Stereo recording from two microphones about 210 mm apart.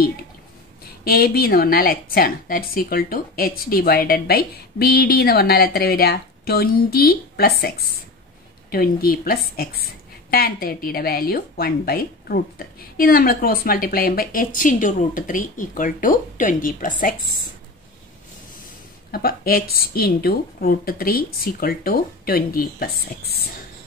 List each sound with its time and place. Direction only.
1.0 s a woman's voice: 45° left (ahead or behind)
19.1 s a woman's voice: 45° left (ahead or behind)